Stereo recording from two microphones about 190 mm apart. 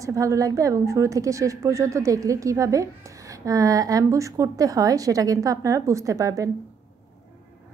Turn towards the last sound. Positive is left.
turn(degrees=-20)  # may be behind; listen again after turning